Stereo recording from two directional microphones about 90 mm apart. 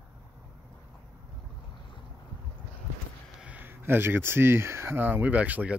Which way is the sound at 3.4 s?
20° right (ahead or behind).